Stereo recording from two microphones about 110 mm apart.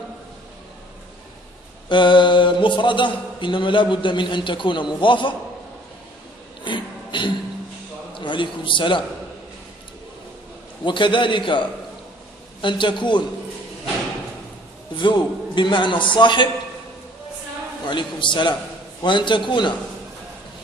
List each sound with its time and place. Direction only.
1.9 s a man's voice: 45° left (ahead or behind)
6.6 s a sound: 45° left (ahead or behind)
8.1 s a man's voice: 45° left (ahead or behind)
10.9 s a man's voice: 45° left (ahead or behind)
15.0 s a man's voice: 45° left (ahead or behind)
17.8 s a man's voice: 45° left (ahead or behind)